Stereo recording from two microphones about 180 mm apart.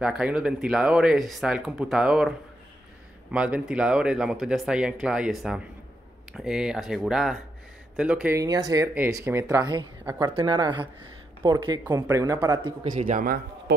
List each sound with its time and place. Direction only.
0.0 s speech: 5° right (ahead or behind)
8.4 s speech: 20° right (ahead or behind)
10.0 s speech: 10° right (ahead or behind)
10.3 s speech: 25° right (ahead or behind)
13.1 s speech: 55° right (ahead or behind)